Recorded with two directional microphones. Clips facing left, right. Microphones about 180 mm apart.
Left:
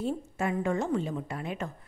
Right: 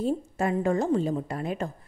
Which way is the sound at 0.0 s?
40° right (ahead or behind).